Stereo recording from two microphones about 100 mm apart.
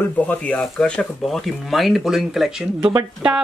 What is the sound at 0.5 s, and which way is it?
Speech, 5° left (ahead or behind).